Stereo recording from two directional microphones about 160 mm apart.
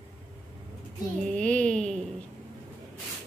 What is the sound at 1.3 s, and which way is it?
Speech, 5° left (ahead or behind).